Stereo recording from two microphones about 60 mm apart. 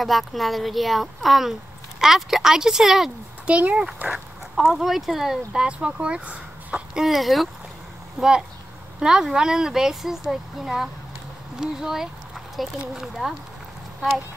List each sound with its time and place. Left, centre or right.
0.0 s speech: centre
3.4 s speech: centre
4.1 s speech: centre
5.7 s speech: centre
6.9 s speech: centre